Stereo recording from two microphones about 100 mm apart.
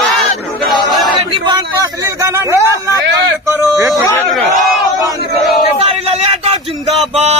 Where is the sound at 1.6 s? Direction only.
35° right (ahead or behind).